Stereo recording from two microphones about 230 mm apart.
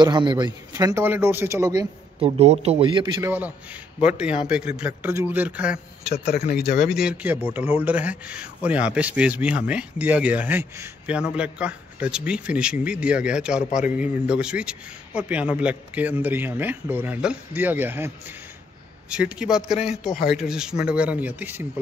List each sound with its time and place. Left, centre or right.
0.0 s a man's voice: centre
3.3 s a man's voice: centre
6.0 s a man's voice: left
6.9 s a man's voice: centre